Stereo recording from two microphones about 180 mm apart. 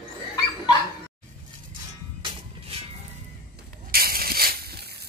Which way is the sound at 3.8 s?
55° right (ahead or behind).